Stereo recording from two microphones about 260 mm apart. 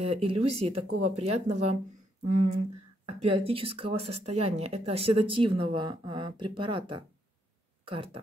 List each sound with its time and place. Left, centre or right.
0.0 s speech: right